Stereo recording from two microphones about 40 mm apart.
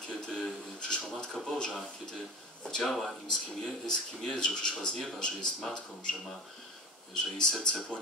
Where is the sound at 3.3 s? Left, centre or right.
Centre.